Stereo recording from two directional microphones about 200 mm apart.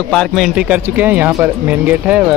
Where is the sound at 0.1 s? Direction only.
Centre (ahead or behind).